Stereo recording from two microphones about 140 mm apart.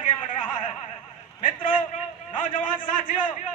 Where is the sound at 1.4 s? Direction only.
70° left (ahead or behind).